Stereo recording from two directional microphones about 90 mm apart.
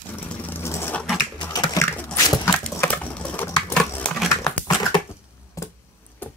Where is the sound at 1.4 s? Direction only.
60° left (ahead or behind).